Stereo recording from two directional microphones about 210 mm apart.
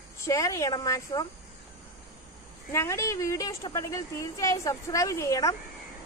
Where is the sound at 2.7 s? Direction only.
15° left (ahead or behind).